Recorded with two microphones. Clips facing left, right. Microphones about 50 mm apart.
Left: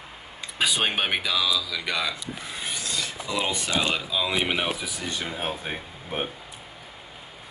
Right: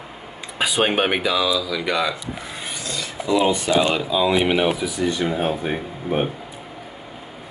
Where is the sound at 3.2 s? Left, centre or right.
Centre.